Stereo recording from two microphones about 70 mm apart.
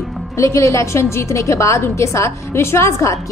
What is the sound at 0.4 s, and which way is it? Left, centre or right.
A woman's voice, left.